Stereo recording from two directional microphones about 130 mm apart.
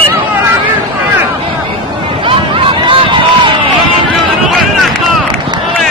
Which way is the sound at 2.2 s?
40° right (ahead or behind).